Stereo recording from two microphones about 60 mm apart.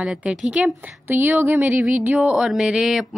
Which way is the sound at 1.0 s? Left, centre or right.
Right.